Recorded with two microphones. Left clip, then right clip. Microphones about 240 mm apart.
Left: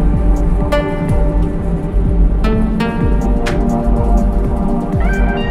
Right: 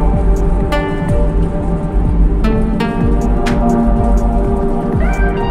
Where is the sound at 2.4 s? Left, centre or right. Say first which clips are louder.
Even; centre.